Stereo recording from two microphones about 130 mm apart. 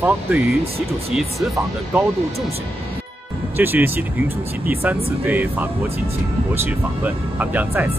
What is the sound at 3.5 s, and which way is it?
Speech, 15° right (ahead or behind).